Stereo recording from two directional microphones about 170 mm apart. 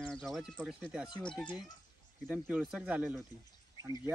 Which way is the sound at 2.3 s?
5° right (ahead or behind).